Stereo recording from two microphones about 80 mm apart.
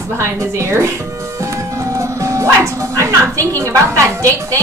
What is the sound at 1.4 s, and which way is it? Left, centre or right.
Music, right.